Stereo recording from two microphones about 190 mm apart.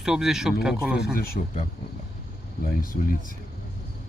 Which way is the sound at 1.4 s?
40° left (ahead or behind).